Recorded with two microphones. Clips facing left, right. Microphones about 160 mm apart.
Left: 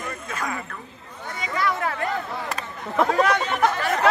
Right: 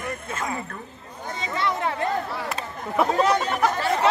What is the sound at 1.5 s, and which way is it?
Speech, 25° right (ahead or behind).